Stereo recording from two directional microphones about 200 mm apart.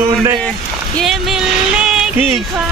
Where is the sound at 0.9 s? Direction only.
Centre (ahead or behind).